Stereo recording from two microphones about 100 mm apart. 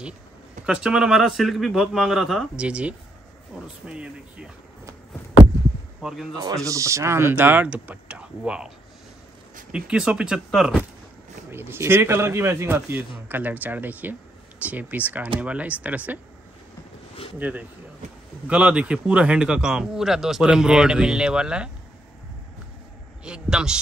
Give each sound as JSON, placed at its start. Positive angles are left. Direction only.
{"t": 0.7, "sound": "speech", "side_deg": -10}
{"t": 6.0, "sound": "speech", "side_deg": -5}
{"t": 6.3, "sound": "speech", "side_deg": -40}
{"t": 11.5, "sound": "speech", "side_deg": -25}
{"t": 17.4, "sound": "speech", "side_deg": -15}
{"t": 23.2, "sound": "speech", "side_deg": -10}